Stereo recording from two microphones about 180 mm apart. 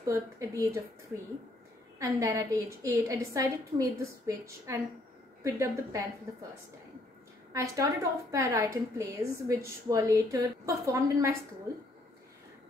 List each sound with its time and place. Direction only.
0.0 s a woman's voice: 15° right (ahead or behind)
2.0 s a woman's voice: 20° right (ahead or behind)
7.5 s a woman's voice: 20° right (ahead or behind)